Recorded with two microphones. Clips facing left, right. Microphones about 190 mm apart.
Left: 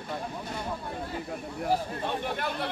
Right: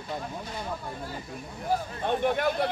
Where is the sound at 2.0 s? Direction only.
50° right (ahead or behind).